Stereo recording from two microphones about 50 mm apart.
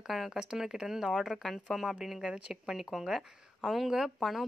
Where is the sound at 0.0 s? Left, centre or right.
Centre.